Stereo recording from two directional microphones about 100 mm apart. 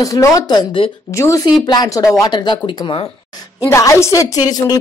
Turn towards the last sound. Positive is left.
turn(degrees=40)  # may be behind; listen again after turning